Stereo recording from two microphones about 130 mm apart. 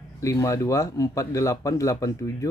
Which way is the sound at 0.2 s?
25° left (ahead or behind).